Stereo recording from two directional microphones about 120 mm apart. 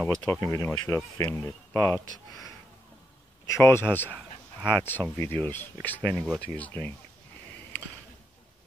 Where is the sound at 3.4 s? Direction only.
25° left (ahead or behind).